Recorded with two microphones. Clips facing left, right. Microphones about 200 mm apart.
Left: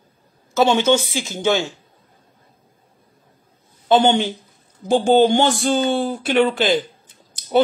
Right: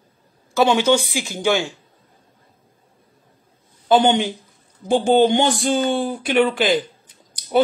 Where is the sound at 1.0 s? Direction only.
15° right (ahead or behind).